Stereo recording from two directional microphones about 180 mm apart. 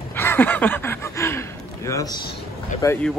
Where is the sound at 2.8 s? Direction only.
20° left (ahead or behind).